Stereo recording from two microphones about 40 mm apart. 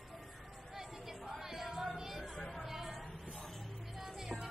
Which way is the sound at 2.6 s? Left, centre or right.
Centre.